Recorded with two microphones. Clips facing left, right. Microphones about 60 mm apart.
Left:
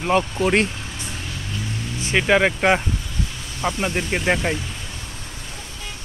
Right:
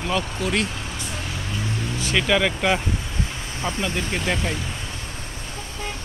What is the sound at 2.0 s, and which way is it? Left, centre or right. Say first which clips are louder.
Speech: left 4 dB; left.